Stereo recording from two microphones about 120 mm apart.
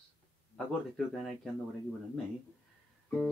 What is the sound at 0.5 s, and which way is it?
Music, 5° left (ahead or behind).